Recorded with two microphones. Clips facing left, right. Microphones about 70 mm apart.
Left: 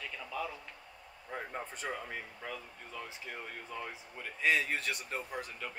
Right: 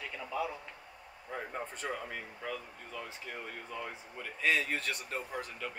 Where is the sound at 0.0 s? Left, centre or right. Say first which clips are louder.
Right 3 dB; centre.